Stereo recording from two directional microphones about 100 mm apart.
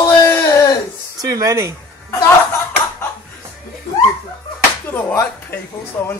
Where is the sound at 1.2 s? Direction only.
35° right (ahead or behind).